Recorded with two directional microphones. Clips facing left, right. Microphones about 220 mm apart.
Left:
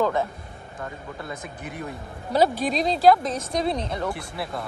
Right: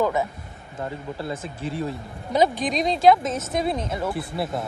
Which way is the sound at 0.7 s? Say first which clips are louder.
Right 5 dB; 30° right (ahead or behind).